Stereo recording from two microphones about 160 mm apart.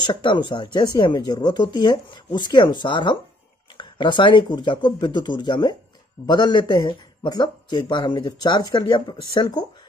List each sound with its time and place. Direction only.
0.0 s a man's voice: 30° left (ahead or behind)